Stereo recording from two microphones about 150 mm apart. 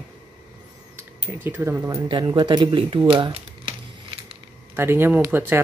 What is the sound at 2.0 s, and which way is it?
Speech, 30° right (ahead or behind).